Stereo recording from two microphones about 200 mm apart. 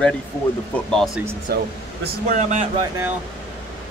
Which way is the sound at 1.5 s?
50° right (ahead or behind).